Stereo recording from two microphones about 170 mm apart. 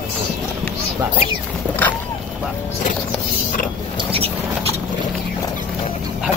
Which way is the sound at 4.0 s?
35° right (ahead or behind).